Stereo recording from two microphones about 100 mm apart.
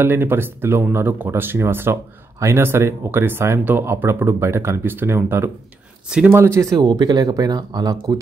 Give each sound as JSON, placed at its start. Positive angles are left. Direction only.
{"t": 0.0, "sound": "speech", "side_deg": -20}